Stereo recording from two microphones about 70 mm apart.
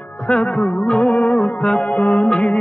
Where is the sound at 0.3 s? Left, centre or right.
Centre.